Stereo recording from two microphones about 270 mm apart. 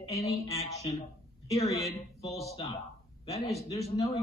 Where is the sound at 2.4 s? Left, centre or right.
Centre.